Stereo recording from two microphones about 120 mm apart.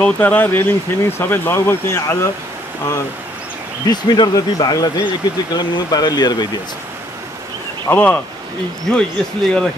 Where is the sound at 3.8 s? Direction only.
35° left (ahead or behind).